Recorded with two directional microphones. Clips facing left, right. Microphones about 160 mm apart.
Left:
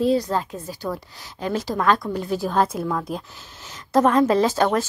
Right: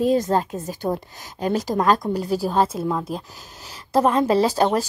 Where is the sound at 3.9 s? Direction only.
30° right (ahead or behind).